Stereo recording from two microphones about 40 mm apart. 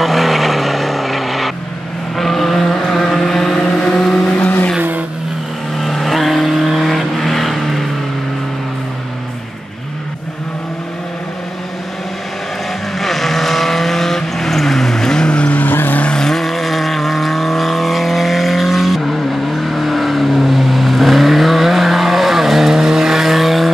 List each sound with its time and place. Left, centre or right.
0.0 s vehicle: centre
5.8 s vehicle: centre
13.0 s vehicle: centre
15.2 s vehicle: left
15.5 s vehicle: left
16.1 s vehicle: centre